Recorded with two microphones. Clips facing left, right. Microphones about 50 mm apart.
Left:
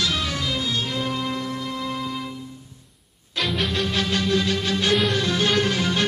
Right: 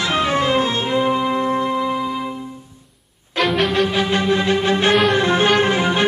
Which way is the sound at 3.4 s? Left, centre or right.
Centre.